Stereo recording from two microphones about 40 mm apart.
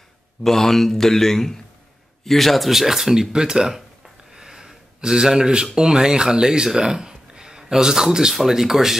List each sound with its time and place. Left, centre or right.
0.4 s a man's voice: centre
4.3 s a sound: centre
5.8 s speech: centre